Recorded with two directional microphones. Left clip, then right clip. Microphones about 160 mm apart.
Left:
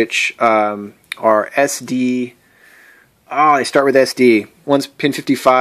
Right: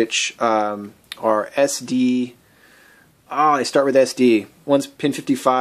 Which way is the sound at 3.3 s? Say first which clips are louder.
Left 4 dB; 25° left (ahead or behind).